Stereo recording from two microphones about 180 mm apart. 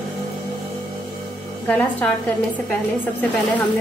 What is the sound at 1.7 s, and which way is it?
Speech, 5° left (ahead or behind).